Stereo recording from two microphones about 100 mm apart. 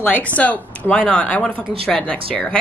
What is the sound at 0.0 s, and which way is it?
A woman's voice, 15° left (ahead or behind).